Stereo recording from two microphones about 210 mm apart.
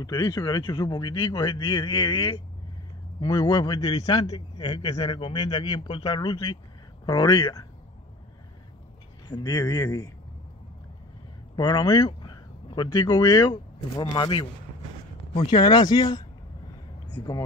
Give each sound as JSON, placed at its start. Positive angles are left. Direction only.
{"t": 0.0, "sound": "a man's voice", "side_deg": 20}
{"t": 9.3, "sound": "speech", "side_deg": 20}
{"t": 11.5, "sound": "a man's voice", "side_deg": 20}
{"t": 17.2, "sound": "speech", "side_deg": 15}